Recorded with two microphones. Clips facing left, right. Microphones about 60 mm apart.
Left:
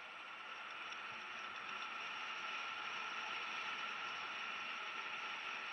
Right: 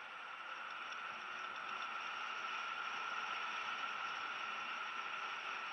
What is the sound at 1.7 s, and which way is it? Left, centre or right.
Vehicle, right.